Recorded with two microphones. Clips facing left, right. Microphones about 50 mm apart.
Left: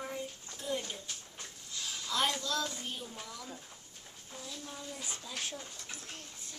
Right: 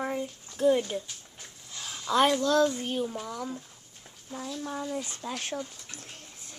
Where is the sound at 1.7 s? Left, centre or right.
Right.